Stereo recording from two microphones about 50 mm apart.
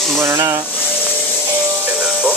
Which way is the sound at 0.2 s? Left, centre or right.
Right.